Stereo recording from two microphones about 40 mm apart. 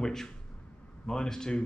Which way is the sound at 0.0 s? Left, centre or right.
Centre.